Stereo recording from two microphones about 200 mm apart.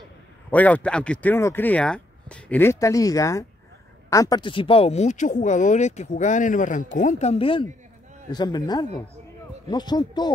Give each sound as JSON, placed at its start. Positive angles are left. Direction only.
{"t": 0.5, "sound": "speech", "side_deg": 10}